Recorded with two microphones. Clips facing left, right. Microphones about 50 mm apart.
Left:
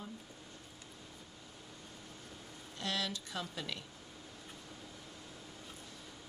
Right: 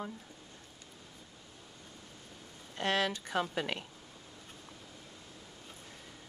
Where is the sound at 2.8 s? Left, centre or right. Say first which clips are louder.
Right 7 dB; right.